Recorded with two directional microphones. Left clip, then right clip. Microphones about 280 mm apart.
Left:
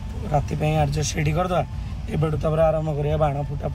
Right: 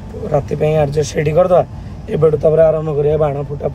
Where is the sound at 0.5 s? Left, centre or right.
Centre.